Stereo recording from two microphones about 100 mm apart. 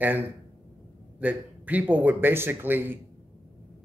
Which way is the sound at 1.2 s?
15° right (ahead or behind).